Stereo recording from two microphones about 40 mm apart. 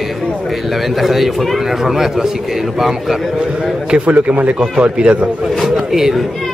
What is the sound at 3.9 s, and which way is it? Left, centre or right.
A man's voice, right.